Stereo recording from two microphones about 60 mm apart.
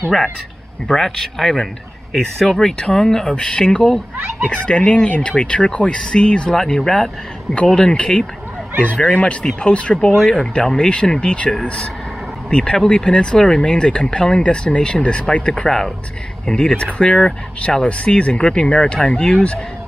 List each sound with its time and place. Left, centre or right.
0.8 s speech: centre
4.5 s fowl: left
5.4 s speech: centre